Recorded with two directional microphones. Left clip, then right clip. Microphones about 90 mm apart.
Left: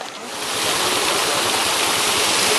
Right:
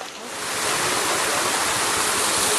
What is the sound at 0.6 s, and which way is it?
Stream, 10° left (ahead or behind).